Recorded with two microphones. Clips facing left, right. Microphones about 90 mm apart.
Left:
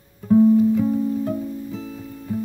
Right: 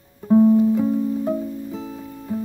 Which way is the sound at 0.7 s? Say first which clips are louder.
Even; 15° right (ahead or behind).